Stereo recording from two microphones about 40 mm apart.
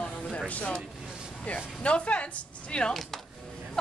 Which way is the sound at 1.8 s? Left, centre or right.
Left.